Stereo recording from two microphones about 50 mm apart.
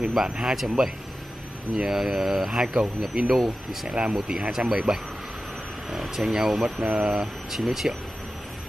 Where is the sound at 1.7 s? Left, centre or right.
Centre.